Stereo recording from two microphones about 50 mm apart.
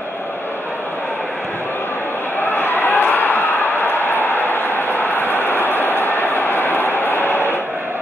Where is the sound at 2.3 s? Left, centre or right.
Left.